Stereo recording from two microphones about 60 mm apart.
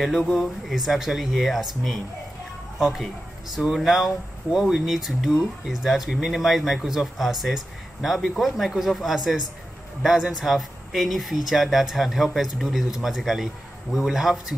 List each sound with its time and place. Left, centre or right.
0.0 s speech: centre